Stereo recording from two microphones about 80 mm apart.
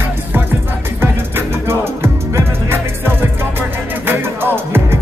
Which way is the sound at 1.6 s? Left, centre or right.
Right.